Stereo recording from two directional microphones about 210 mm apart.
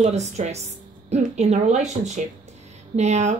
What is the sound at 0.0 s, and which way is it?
A woman's voice, 35° right (ahead or behind).